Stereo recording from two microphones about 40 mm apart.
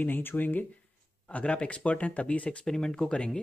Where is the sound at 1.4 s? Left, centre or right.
Left.